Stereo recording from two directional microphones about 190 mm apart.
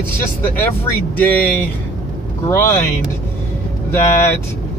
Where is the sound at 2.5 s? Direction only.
15° left (ahead or behind).